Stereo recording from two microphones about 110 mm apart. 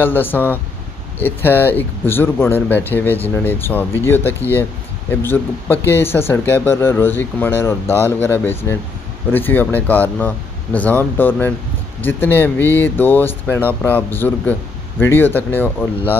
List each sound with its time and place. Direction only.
0.0 s speech: 20° left (ahead or behind)